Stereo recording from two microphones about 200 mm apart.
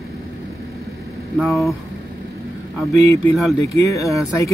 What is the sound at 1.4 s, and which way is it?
Speech, centre (ahead or behind).